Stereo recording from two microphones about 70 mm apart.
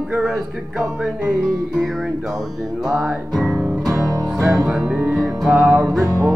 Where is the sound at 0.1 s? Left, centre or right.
Centre.